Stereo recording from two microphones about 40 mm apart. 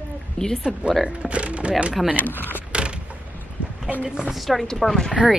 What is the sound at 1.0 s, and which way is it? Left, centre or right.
Speech, right.